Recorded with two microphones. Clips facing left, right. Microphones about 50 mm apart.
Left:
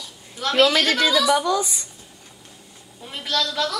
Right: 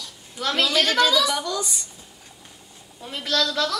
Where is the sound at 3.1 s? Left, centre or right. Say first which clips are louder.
Right 1 dB; centre.